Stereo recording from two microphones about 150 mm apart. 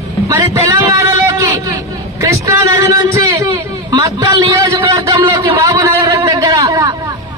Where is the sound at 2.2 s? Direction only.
20° right (ahead or behind).